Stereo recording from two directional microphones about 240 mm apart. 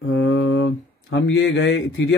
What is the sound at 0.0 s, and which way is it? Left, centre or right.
Speech, left.